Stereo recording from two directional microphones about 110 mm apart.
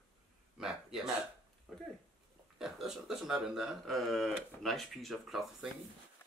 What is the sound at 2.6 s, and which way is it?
Speech, 5° right (ahead or behind).